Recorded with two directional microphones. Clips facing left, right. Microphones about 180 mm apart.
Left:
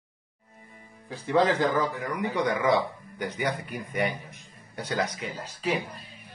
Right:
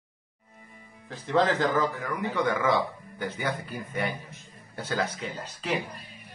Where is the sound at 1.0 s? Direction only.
10° left (ahead or behind).